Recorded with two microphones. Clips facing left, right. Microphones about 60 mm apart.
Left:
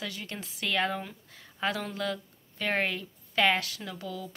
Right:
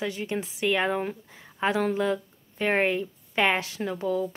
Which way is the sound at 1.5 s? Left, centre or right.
Right.